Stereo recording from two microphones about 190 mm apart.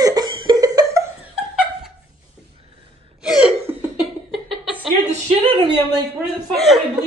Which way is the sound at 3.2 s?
5° right (ahead or behind).